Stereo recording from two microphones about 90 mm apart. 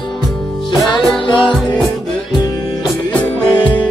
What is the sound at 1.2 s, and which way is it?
Music, 60° left (ahead or behind).